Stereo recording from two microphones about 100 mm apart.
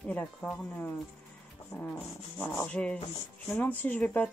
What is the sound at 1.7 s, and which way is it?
Speech, 25° left (ahead or behind).